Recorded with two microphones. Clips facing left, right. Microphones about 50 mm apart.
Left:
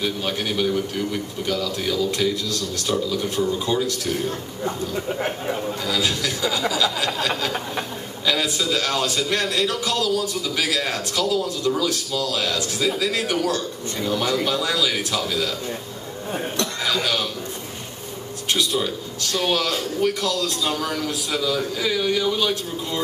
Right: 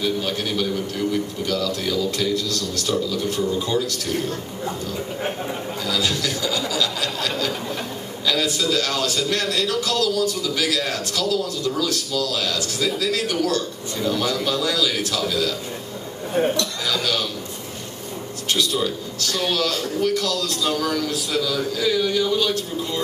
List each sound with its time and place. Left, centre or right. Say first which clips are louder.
0.0 s a man's voice: right 1 dB; centre
5.5 s speech: left 1 dB; centre
6.7 s a sound: left 2 dB; centre
8.3 s a man's voice: right 1 dB; centre
16.8 s a man's voice: left 2 dB; centre
18.5 s a man's voice: even; centre